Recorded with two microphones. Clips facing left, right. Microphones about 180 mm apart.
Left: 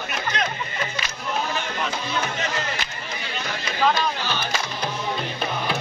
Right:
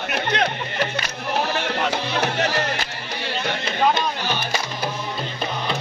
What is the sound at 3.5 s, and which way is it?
Music, 25° right (ahead or behind).